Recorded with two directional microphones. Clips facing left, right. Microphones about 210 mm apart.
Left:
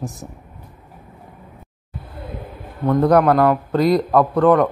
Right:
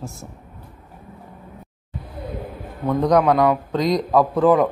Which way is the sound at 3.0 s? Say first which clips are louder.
Left 2 dB; 5° left (ahead or behind).